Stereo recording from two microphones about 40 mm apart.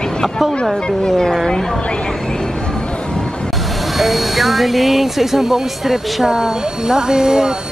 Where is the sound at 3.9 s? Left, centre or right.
Centre.